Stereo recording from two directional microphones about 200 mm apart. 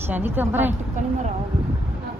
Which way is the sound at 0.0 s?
10° right (ahead or behind).